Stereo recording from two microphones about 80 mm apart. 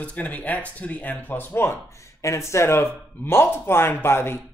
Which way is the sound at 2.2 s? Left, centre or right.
Left.